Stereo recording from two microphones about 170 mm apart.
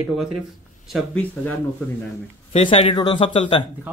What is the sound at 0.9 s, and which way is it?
Speech, 5° left (ahead or behind).